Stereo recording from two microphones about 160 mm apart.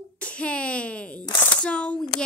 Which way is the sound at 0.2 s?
5° left (ahead or behind).